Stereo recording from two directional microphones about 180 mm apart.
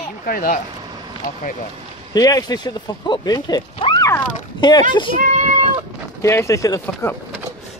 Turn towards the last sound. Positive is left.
turn(degrees=10)  # may be behind; listen again after turning